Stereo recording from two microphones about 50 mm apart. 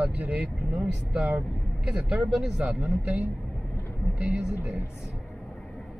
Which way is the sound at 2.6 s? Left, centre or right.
Right.